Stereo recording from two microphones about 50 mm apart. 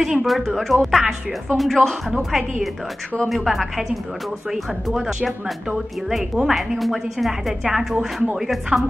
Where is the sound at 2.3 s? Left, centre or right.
Centre.